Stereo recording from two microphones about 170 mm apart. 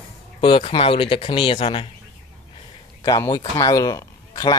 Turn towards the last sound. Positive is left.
turn(degrees=20)  # may be behind; listen again after turning